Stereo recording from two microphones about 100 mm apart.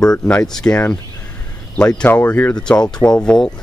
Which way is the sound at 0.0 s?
10° left (ahead or behind).